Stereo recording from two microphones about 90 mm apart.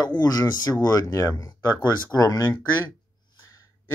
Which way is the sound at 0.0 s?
50° left (ahead or behind).